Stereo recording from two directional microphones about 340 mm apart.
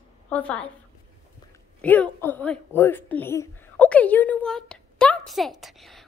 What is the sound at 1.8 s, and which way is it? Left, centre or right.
Speech, centre.